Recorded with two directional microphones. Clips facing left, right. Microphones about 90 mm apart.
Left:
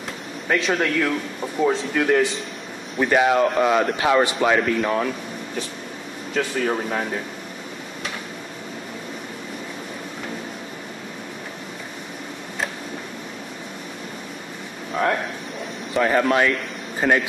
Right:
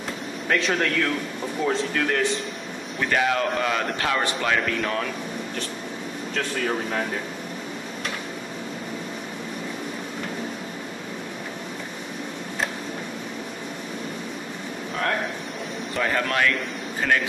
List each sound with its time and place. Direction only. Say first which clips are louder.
0.5 s speech: left 2 dB; 5° left (ahead or behind)
6.3 s speech: left 4 dB; 5° left (ahead or behind)
16.0 s speech: left 5 dB; 15° left (ahead or behind)